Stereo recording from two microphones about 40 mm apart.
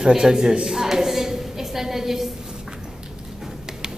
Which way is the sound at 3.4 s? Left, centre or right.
Centre.